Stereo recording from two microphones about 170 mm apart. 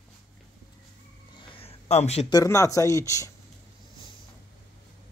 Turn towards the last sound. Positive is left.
turn(degrees=20)  # may be behind; listen again after turning